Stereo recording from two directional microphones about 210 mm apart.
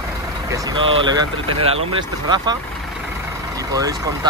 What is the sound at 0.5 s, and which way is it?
Speech, 25° right (ahead or behind).